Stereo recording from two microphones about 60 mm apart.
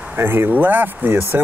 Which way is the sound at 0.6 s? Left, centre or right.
Right.